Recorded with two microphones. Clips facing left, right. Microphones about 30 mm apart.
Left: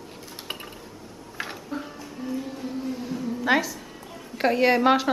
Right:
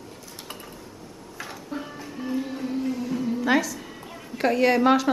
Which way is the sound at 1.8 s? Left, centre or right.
Right.